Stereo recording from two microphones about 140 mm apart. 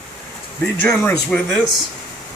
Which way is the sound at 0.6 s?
15° left (ahead or behind).